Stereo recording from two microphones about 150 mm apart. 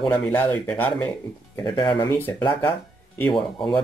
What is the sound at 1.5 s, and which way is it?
Speech, 30° left (ahead or behind).